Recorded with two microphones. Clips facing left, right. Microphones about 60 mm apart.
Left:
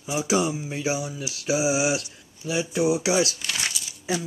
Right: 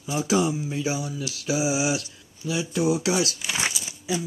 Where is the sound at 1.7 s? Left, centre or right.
Left.